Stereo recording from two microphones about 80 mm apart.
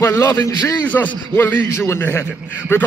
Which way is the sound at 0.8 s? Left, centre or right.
Left.